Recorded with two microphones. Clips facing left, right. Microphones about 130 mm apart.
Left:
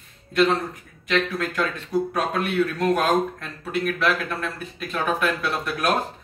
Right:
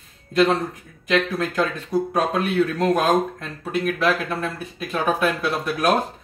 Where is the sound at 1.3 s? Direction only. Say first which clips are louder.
Right 3 dB; 30° right (ahead or behind).